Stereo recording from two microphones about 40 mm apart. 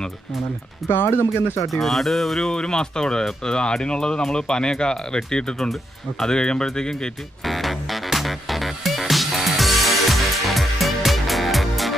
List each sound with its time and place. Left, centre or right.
0.8 s speech: left
1.7 s speech: centre
2.5 s speech: centre
7.4 s music: centre